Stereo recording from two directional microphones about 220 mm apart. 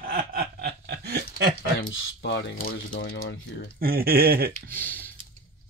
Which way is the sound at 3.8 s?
45° right (ahead or behind).